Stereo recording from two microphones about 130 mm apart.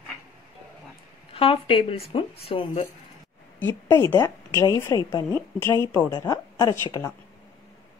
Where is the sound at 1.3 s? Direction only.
45° left (ahead or behind).